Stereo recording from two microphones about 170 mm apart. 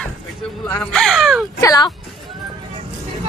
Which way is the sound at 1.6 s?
20° left (ahead or behind).